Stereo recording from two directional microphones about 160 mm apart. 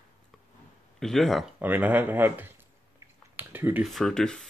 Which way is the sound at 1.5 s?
10° right (ahead or behind).